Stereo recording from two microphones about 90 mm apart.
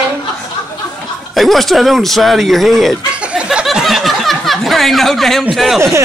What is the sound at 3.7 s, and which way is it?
Chuckle, centre (ahead or behind).